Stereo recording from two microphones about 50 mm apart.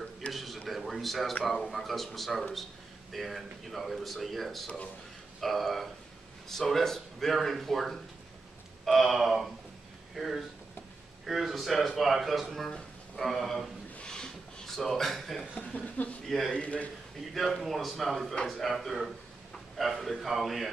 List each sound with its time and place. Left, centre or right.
0.3 s a sound: centre
1.4 s speech: centre
12.4 s a man's voice: centre
14.0 s a sound: centre
14.8 s speech: centre
15.5 s speech: left
16.3 s speech: centre
16.5 s a man's voice: left
17.3 s a man's voice: centre